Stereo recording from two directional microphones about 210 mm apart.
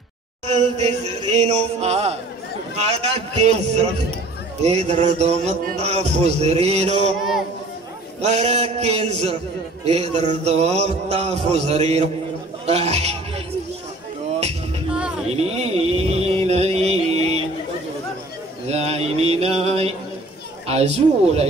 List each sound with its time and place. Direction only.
0.5 s music: 30° right (ahead or behind)
8.2 s music: 30° right (ahead or behind)
14.9 s music: 5° right (ahead or behind)
15.2 s a sound: 30° right (ahead or behind)
18.7 s mantra: 30° right (ahead or behind)
20.6 s speech: 30° right (ahead or behind)